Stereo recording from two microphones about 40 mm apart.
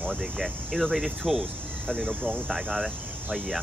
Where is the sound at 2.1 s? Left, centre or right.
Right.